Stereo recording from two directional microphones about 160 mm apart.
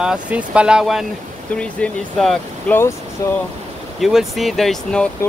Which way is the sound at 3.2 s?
20° left (ahead or behind).